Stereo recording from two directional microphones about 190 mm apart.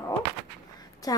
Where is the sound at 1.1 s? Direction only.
20° left (ahead or behind).